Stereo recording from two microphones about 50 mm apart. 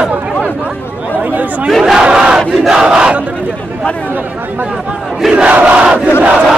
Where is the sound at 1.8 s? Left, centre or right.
Centre.